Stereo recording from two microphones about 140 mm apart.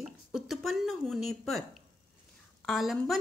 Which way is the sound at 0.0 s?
Centre (ahead or behind).